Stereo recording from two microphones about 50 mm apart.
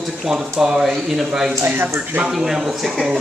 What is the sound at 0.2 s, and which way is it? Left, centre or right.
Speech, centre.